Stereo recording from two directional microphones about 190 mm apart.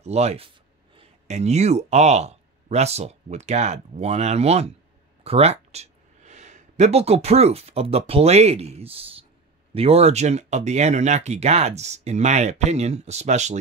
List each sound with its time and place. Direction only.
0.0 s speech: 35° right (ahead or behind)